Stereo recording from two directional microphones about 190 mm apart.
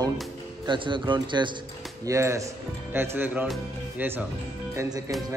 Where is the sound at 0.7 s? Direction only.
25° right (ahead or behind).